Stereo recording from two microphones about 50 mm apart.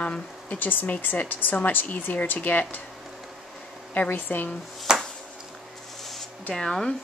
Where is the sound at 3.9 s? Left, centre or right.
Left.